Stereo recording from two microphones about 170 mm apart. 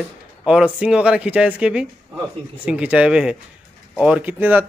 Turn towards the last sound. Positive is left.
turn(degrees=-10)  # may be behind; listen again after turning